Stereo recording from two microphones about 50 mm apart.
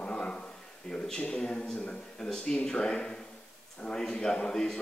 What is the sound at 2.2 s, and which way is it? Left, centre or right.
A man's voice, centre.